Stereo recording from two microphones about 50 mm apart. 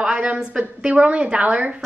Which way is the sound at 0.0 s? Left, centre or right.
Centre.